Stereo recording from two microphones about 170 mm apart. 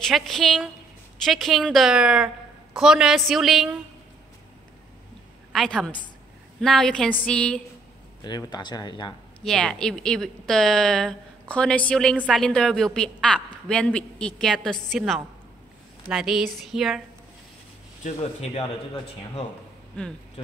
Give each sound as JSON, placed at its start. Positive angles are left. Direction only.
{"t": 0.0, "sound": "a woman's voice", "side_deg": 0}
{"t": 5.5, "sound": "a woman's voice", "side_deg": 0}
{"t": 8.2, "sound": "speech", "side_deg": 25}
{"t": 9.4, "sound": "a woman's voice", "side_deg": 5}
{"t": 18.0, "sound": "speech", "side_deg": 40}